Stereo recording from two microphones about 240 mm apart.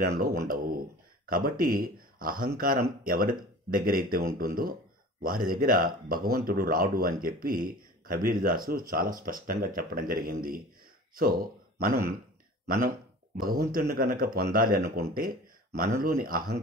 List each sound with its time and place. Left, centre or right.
0.0 s speech: right
12.6 s speech: right
15.1 s a sound: right
16.0 s speech: right